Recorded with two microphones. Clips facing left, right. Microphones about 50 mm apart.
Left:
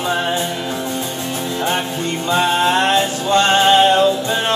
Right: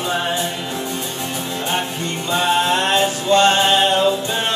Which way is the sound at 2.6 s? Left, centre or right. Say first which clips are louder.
Left 2 dB; left.